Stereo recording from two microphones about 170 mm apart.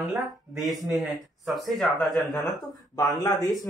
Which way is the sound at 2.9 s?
20° left (ahead or behind).